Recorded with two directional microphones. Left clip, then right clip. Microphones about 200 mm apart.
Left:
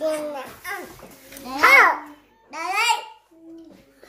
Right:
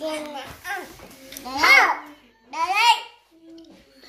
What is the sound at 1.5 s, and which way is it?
Babbling, 15° left (ahead or behind).